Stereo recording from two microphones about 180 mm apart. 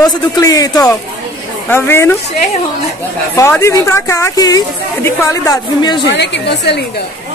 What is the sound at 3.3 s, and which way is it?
Speech, 15° left (ahead or behind).